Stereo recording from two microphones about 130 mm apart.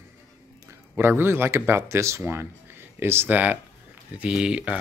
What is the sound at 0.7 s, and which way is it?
Speech, 15° right (ahead or behind).